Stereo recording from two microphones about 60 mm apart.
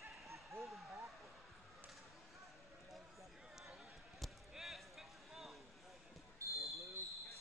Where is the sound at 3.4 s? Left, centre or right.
Centre.